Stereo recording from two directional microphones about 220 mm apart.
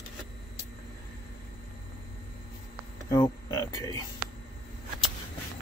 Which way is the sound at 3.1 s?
15° left (ahead or behind).